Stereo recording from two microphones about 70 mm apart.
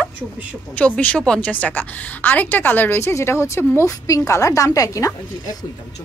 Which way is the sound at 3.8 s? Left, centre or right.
Left.